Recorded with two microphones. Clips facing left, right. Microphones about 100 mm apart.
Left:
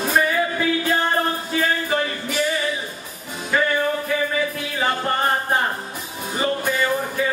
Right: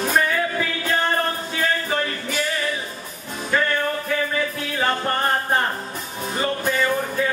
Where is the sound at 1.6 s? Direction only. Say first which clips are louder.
Left 1 dB; 5° left (ahead or behind).